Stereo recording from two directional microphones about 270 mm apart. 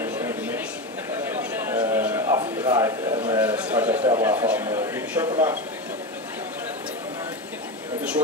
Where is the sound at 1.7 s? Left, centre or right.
Centre.